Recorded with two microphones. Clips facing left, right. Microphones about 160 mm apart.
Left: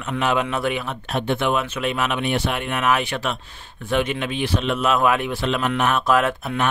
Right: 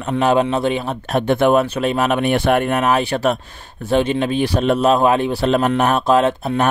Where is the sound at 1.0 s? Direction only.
45° right (ahead or behind).